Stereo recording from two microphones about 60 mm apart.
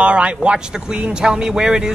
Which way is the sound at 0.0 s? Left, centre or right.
Right.